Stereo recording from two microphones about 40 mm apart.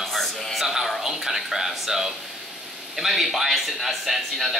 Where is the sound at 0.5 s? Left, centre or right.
Centre.